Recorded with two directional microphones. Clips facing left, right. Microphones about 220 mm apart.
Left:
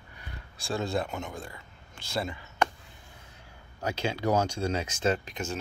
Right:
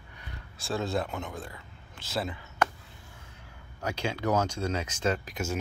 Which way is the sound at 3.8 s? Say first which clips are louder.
Left 1 dB; 30° left (ahead or behind).